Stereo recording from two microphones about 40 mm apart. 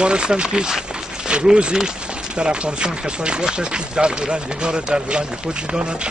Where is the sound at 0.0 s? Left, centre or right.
Right.